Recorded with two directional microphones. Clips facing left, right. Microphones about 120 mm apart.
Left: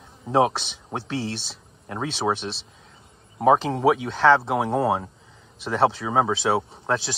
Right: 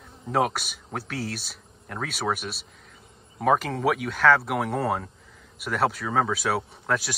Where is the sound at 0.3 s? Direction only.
25° left (ahead or behind).